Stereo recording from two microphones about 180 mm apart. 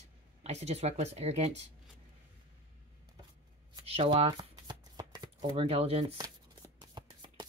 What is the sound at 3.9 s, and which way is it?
Speech, 35° right (ahead or behind).